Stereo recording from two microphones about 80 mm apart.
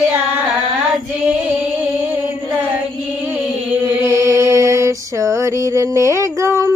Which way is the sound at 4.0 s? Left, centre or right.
Right.